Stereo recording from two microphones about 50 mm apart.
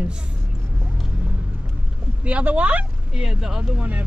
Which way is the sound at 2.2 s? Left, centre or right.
Right.